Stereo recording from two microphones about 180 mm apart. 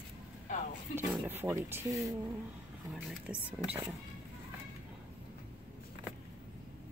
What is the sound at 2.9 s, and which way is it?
Speech, 5° right (ahead or behind).